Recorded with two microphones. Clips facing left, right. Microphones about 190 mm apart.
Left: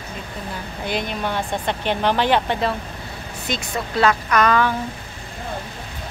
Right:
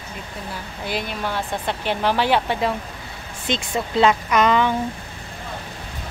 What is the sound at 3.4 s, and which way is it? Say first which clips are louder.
Speech: right 2 dB; 25° right (ahead or behind).